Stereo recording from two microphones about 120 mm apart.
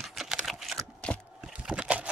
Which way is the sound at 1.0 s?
10° left (ahead or behind).